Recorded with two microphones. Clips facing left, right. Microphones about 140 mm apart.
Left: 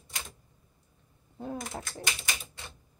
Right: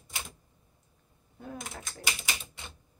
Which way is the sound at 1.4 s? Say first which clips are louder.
Left 5 dB; 30° left (ahead or behind).